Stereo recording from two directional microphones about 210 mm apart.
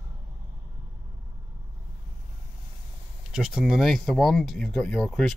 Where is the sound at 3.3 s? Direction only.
5° right (ahead or behind).